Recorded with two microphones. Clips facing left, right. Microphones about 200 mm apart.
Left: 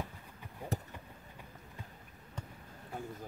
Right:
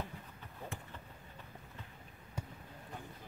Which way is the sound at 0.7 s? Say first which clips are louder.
Left 14 dB; 40° left (ahead or behind).